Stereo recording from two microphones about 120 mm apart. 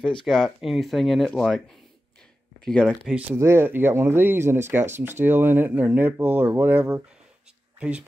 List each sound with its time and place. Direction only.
0.0 s speech: 5° left (ahead or behind)
2.6 s speech: 5° left (ahead or behind)
3.1 s speech: 10° right (ahead or behind)